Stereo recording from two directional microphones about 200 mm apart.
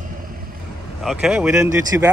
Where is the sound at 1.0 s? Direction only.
5° right (ahead or behind).